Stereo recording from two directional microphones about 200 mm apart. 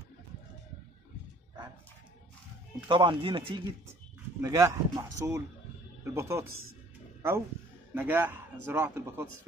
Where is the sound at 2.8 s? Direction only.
25° right (ahead or behind).